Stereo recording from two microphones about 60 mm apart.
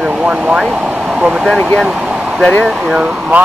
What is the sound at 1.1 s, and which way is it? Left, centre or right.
Speech, centre.